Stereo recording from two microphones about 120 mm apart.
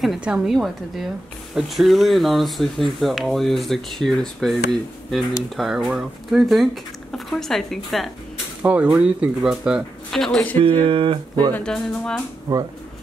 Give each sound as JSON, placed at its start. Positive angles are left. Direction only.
{"t": 0.0, "sound": "speech", "side_deg": -5}
{"t": 8.6, "sound": "speech", "side_deg": -10}
{"t": 10.6, "sound": "speech", "side_deg": -45}
{"t": 11.5, "sound": "speech", "side_deg": 5}
{"t": 12.5, "sound": "speech", "side_deg": -35}